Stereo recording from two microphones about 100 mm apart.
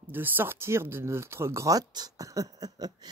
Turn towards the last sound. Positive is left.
turn(degrees=-40)  # may be behind; listen again after turning